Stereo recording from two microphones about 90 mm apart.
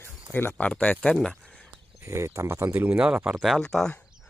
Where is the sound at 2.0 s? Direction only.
35° right (ahead or behind).